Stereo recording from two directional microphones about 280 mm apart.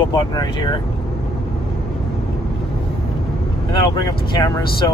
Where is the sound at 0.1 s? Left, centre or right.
Centre.